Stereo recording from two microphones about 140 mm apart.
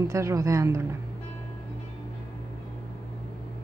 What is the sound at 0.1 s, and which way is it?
Speech, 20° right (ahead or behind).